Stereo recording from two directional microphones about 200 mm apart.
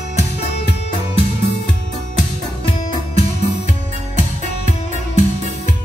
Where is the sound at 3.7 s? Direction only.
35° right (ahead or behind).